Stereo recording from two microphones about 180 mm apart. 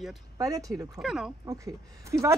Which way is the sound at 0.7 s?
Centre (ahead or behind).